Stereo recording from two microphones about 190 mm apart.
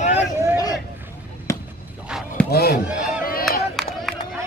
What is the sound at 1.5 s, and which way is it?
Basketball bounce, 15° left (ahead or behind).